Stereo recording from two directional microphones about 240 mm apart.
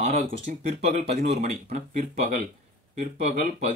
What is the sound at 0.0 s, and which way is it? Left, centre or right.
Speech, right.